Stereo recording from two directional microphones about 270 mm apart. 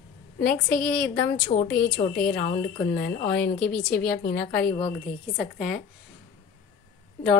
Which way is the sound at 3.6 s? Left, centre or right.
Centre.